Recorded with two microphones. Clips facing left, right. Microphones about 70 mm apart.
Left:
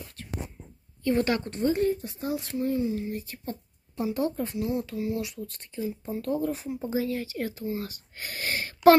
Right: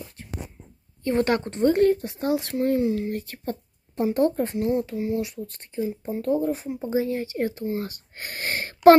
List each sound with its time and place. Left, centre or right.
1.0 s speech: right
1.6 s speech: right
4.8 s speech: right